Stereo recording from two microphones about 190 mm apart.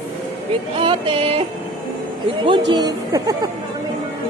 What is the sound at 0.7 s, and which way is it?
Speech, 25° right (ahead or behind).